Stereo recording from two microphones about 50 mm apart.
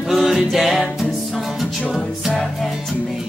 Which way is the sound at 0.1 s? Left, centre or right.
Centre.